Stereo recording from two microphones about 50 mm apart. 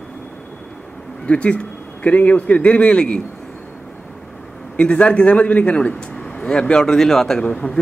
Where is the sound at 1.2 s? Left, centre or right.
Left.